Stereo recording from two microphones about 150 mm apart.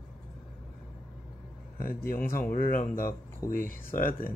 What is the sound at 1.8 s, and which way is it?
Speech, 75° left (ahead or behind).